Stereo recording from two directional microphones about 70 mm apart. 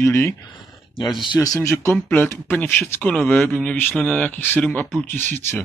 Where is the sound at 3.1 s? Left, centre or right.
Centre.